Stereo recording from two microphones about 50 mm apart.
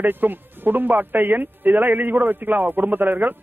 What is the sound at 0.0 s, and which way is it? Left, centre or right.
Speech, right.